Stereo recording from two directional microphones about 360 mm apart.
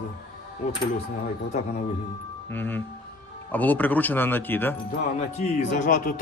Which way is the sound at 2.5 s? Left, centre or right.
Centre.